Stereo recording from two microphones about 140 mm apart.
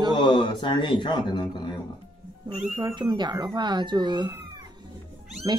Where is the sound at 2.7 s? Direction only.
30° right (ahead or behind).